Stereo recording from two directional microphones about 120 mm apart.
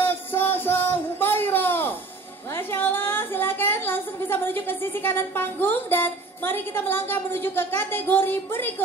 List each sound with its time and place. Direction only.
0.0 s music: 20° left (ahead or behind)
2.5 s a woman's voice: 20° left (ahead or behind)